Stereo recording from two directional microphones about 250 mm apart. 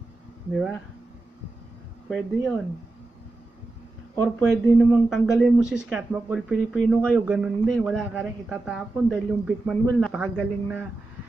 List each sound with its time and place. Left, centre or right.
0.5 s speech: centre
2.0 s speech: centre
4.2 s speech: centre